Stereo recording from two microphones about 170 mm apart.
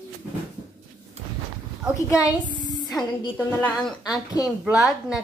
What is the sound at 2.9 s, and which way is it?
A woman's voice, 5° left (ahead or behind).